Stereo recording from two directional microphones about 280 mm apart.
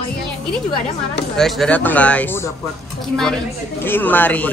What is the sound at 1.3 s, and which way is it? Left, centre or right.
Speech, centre.